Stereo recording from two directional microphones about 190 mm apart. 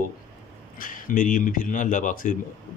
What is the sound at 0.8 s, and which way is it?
Speech, 45° left (ahead or behind).